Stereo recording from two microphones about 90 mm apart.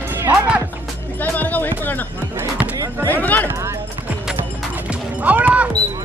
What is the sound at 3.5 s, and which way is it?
Music, 30° right (ahead or behind).